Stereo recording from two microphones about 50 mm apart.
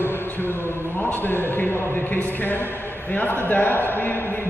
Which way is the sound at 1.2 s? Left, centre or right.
Left.